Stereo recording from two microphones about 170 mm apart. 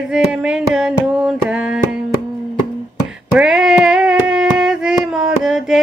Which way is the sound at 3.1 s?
5° right (ahead or behind).